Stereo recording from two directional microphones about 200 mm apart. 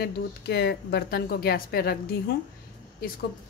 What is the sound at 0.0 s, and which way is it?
Speech, 55° left (ahead or behind).